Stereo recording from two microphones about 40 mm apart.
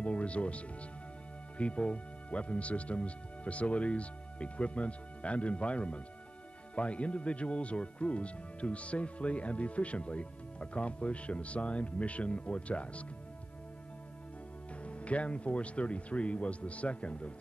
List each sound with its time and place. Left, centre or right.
0.0 s music: left
1.6 s speech: left
14.8 s speech: left